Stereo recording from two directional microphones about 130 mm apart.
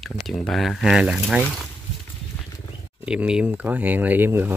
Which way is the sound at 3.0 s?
5° right (ahead or behind).